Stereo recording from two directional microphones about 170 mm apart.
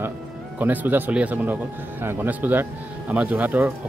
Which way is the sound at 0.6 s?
10° right (ahead or behind).